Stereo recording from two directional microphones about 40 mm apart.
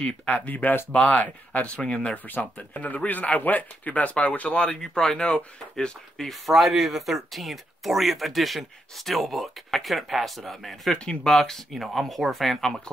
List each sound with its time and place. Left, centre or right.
0.3 s speech: left
4.9 s speech: centre
6.1 s speech: centre
6.5 s speech: centre
11.7 s speech: centre